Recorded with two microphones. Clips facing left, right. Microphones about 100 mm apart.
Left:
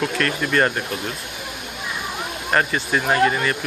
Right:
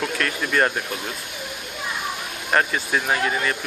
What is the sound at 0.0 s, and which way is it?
Speech, centre (ahead or behind).